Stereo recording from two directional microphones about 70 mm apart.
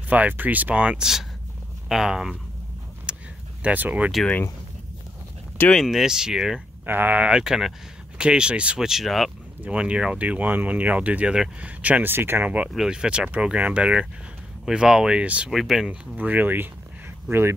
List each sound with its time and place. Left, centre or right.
0.1 s speech: right
1.9 s speech: centre
3.1 s vehicle: centre
3.6 s speech: right
5.9 s speech: centre
6.9 s speech: right; by 9.3 s centre
9.7 s speech: centre
12.7 s speech: centre
15.5 s speech: centre
16.2 s speech: right